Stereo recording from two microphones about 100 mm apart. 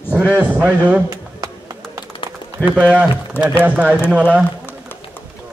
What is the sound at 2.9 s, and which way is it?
Speech, 15° right (ahead or behind).